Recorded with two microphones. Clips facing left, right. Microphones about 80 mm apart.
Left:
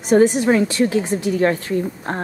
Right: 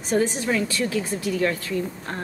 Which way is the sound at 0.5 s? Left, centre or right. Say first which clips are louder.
Left 7 dB; left.